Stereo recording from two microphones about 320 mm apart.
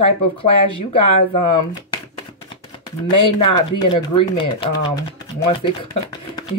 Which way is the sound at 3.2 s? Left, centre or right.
Centre.